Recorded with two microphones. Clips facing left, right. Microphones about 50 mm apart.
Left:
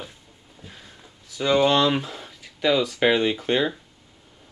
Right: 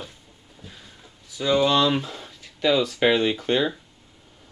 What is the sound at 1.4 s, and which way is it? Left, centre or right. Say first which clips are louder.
Speech: left 1 dB; left.